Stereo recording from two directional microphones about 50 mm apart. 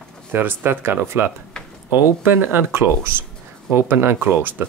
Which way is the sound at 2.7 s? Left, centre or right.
Right.